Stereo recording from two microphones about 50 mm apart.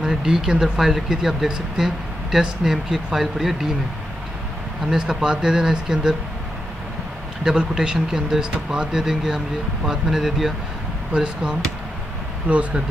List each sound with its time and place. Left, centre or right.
0.0 s speech: centre
4.8 s speech: centre
7.4 s speech: centre
12.4 s speech: right